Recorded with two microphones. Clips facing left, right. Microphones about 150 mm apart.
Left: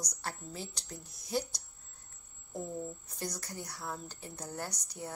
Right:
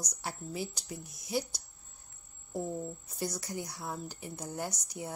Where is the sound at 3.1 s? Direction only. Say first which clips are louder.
Right 5 dB; 10° right (ahead or behind).